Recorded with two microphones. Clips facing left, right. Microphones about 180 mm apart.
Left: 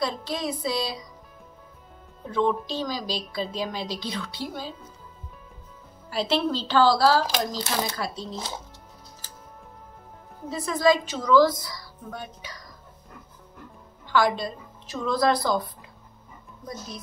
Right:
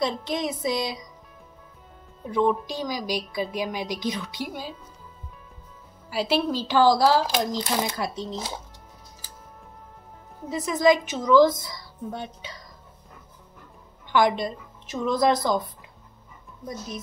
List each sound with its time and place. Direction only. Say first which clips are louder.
0.0 s a woman's voice: right 2 dB; 20° right (ahead or behind)
2.2 s a woman's voice: right 2 dB; 15° right (ahead or behind)
6.0 s a woman's voice: right 1 dB; 10° right (ahead or behind)
10.5 s a woman's voice: right 1 dB; 15° right (ahead or behind)
14.0 s a woman's voice: right 2 dB; 20° right (ahead or behind)